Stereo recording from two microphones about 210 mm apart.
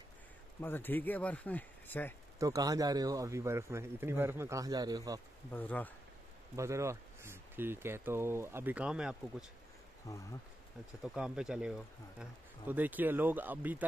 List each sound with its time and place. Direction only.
0.6 s speech: 10° left (ahead or behind)
2.3 s speech: 15° right (ahead or behind)
5.5 s speech: 10° left (ahead or behind)
6.5 s speech: 15° right (ahead or behind)
10.1 s speech: 15° left (ahead or behind)
11.1 s speech: 5° right (ahead or behind)